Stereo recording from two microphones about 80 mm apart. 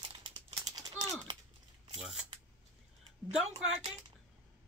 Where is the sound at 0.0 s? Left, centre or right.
Right.